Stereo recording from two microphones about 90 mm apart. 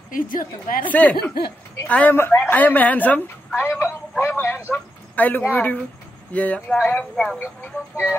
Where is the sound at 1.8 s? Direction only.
15° left (ahead or behind).